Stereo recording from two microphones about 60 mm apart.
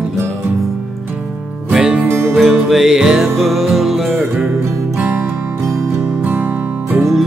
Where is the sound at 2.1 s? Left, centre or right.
Right.